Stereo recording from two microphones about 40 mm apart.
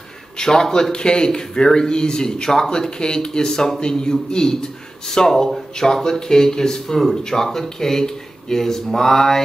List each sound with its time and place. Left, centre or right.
0.4 s speech: centre
0.9 s speech: left